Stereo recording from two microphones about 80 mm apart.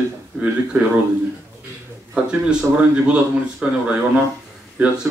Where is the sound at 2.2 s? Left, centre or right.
Centre.